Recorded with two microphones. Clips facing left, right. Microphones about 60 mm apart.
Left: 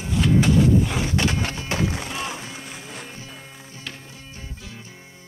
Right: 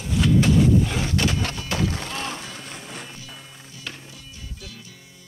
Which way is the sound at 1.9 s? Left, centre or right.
Centre.